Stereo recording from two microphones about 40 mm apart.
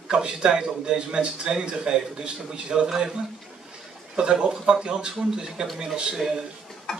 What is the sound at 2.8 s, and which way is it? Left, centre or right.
Speech, centre.